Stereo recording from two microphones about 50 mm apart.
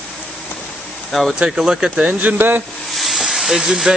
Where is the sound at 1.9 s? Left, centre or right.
Right.